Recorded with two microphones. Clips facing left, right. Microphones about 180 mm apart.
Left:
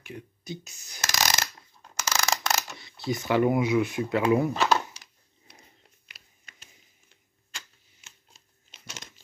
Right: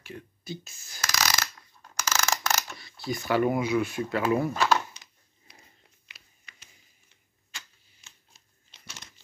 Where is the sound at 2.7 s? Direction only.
20° left (ahead or behind).